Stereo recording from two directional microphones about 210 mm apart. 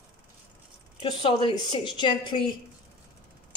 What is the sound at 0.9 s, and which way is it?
Speech, 25° left (ahead or behind).